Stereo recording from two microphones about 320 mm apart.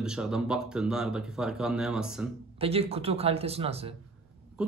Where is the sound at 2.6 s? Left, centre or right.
Centre.